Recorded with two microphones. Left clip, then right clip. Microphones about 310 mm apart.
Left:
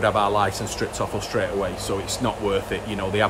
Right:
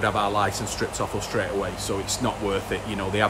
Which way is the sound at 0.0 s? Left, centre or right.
Centre.